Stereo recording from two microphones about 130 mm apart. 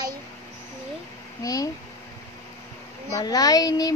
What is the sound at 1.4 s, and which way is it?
Speech, 25° left (ahead or behind).